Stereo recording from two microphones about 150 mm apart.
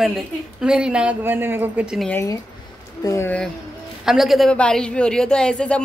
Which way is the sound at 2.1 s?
20° left (ahead or behind).